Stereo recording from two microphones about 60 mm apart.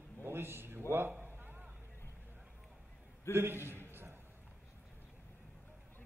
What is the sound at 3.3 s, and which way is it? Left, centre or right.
Speech, right.